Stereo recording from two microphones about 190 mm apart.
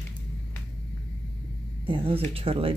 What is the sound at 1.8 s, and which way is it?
Speech, 30° right (ahead or behind).